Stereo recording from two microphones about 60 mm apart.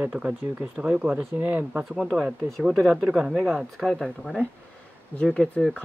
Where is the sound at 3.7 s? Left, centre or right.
Centre.